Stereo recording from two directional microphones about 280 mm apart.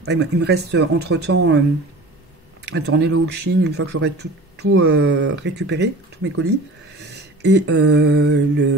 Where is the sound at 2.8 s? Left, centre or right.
Right.